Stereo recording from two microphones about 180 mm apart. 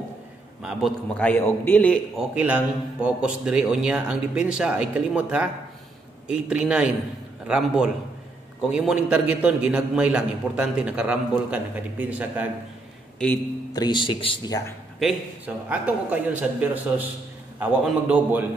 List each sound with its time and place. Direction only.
0.6 s a man's voice: 5° right (ahead or behind)
2.1 s a man's voice: 5° right (ahead or behind)
13.7 s speech: 25° left (ahead or behind)
15.0 s a man's voice: 5° right (ahead or behind)